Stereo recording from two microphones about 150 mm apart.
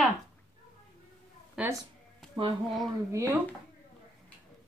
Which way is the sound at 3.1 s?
20° right (ahead or behind).